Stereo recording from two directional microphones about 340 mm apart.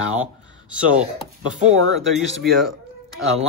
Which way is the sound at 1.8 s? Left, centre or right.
Right.